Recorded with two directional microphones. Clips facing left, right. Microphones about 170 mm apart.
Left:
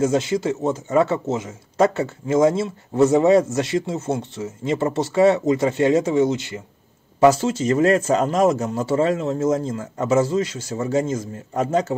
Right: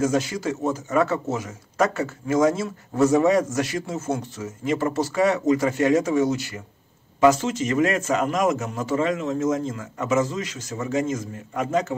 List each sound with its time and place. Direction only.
0.0 s speech: 25° left (ahead or behind)